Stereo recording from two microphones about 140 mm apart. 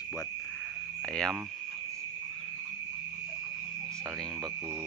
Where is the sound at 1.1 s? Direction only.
5° left (ahead or behind).